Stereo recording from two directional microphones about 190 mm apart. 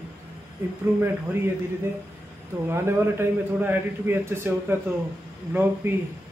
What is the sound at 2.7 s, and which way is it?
A man's voice, 15° right (ahead or behind).